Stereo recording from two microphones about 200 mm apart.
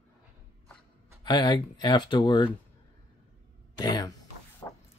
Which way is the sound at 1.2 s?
20° left (ahead or behind).